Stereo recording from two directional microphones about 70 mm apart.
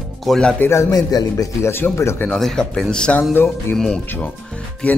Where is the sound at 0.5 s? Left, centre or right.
Left.